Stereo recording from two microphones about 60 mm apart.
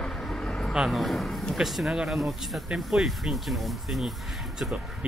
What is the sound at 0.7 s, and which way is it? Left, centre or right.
Speech, centre.